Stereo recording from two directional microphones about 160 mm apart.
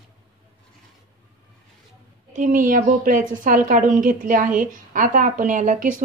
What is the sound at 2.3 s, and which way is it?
A woman's voice, 55° right (ahead or behind).